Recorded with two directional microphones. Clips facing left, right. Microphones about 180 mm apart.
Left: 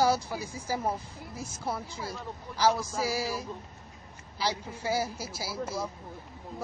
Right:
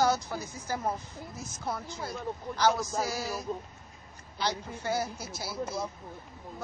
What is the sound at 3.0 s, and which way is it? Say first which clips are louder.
Speech: left 3 dB; 10° left (ahead or behind).